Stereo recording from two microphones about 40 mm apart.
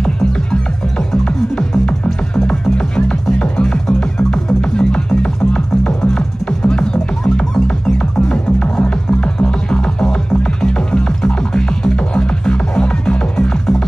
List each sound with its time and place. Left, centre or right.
0.0 s music: left